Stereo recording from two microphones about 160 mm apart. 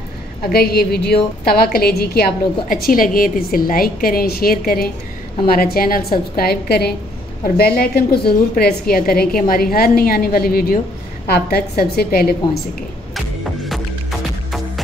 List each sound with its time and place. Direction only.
0.4 s a woman's voice: 75° left (ahead or behind)
2.7 s a woman's voice: 60° left (ahead or behind)
13.1 s music: centre (ahead or behind)